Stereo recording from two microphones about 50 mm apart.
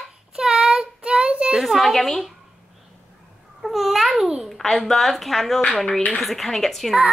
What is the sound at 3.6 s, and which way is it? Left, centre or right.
Speech, centre.